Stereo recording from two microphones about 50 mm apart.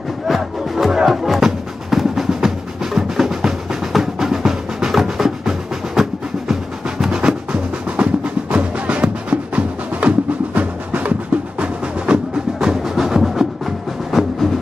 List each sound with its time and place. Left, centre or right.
0.3 s music: centre
12.5 s music: centre